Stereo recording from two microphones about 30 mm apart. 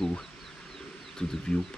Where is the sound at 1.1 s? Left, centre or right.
Left.